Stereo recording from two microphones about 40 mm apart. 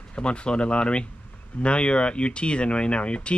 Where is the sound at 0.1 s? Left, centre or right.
Left.